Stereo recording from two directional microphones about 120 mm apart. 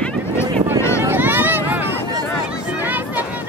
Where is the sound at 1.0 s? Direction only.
15° right (ahead or behind).